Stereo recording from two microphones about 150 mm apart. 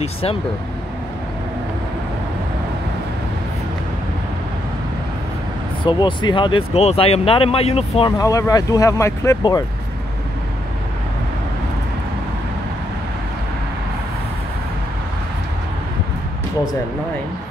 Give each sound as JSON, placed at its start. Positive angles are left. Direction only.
{"t": 0.0, "sound": "speech", "side_deg": 40}
{"t": 5.9, "sound": "speech", "side_deg": 30}
{"t": 8.2, "sound": "speech", "side_deg": 25}